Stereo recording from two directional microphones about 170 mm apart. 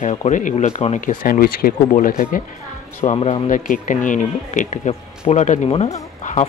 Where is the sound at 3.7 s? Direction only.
50° left (ahead or behind).